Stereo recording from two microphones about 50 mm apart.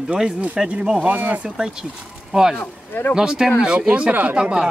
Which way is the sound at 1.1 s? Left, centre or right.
Right.